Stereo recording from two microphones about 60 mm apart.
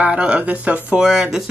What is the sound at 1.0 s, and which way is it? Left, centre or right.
Speech, centre.